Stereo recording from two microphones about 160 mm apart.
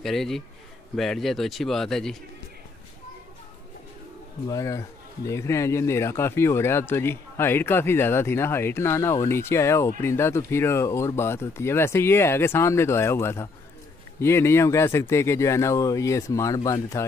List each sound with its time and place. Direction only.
0.0 s speech: centre (ahead or behind)
4.5 s a man's voice: 20° left (ahead or behind)